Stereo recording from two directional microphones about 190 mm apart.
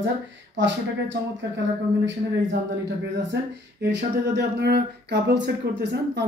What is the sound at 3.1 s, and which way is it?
Speech, 65° right (ahead or behind).